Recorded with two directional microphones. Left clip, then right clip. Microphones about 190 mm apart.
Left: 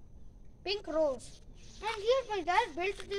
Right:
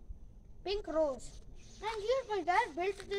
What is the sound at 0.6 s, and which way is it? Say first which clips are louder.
A child's voice: left 2 dB; 15° left (ahead or behind).